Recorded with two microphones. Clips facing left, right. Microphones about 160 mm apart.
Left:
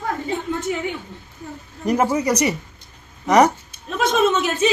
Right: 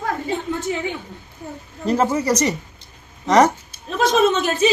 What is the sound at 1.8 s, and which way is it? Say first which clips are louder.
Speech: even; 15° left (ahead or behind).